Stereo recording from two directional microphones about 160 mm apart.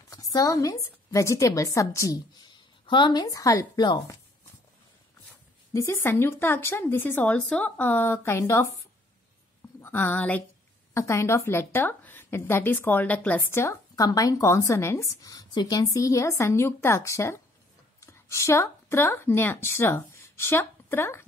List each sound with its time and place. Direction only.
0.1 s a woman's voice: 20° left (ahead or behind)
5.7 s a woman's voice: 15° left (ahead or behind)
9.8 s a woman's voice: 15° left (ahead or behind)